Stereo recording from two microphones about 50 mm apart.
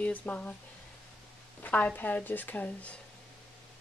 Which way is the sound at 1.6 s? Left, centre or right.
Left.